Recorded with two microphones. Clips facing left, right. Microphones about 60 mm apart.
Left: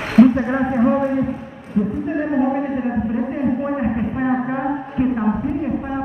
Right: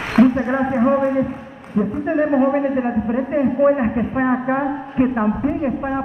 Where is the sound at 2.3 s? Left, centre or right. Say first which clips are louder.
Right 1 dB; right.